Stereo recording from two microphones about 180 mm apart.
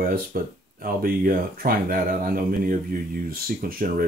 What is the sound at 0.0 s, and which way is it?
Speech, 55° right (ahead or behind).